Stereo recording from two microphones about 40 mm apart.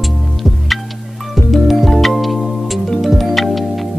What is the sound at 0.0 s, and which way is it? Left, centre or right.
Music, centre.